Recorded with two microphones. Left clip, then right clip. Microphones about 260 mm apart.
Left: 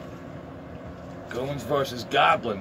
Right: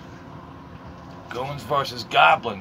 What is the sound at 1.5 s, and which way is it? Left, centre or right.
Speech, right.